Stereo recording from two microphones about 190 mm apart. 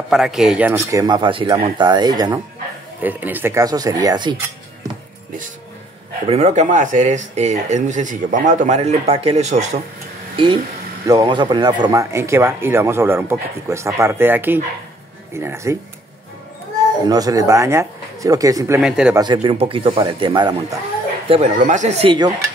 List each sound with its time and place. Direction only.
0.1 s speech: 5° right (ahead or behind); by 2.4 s 20° right (ahead or behind)
3.0 s speech: 10° right (ahead or behind)
6.2 s speech: 35° right (ahead or behind); by 15.8 s 15° right (ahead or behind)
17.0 s speech: 20° right (ahead or behind)
18.8 s speech: 5° right (ahead or behind)
19.1 s speech: 25° right (ahead or behind)
21.3 s speech: 35° right (ahead or behind)